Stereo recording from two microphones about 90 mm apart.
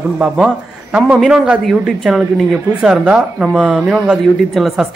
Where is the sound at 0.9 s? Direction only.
15° right (ahead or behind).